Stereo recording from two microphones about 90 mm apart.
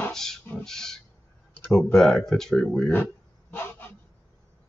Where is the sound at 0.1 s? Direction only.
5° left (ahead or behind).